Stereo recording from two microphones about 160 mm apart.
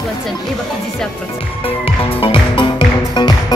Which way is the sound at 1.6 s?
35° left (ahead or behind).